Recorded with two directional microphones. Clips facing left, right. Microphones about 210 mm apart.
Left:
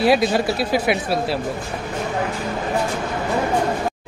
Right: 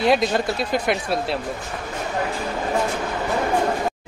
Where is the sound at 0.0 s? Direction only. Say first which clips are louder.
Left 2 dB; 5° left (ahead or behind).